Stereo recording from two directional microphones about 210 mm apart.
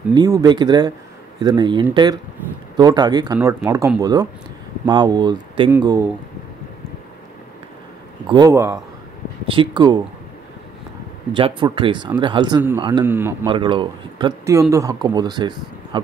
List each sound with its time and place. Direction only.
0.1 s speech: 20° right (ahead or behind)
8.3 s speech: 15° right (ahead or behind)
11.3 s speech: 25° right (ahead or behind)
13.5 s speech: 25° right (ahead or behind)